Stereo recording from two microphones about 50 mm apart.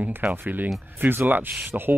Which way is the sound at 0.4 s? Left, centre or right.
Right.